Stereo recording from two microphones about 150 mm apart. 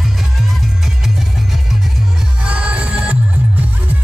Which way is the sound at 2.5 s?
10° right (ahead or behind).